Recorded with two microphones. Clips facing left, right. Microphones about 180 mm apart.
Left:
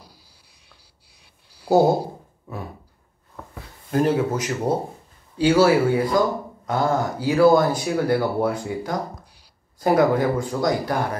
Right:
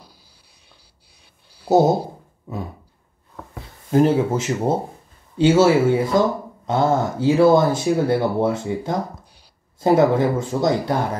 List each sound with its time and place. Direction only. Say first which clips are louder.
3.9 s speech: right 4 dB; 25° right (ahead or behind)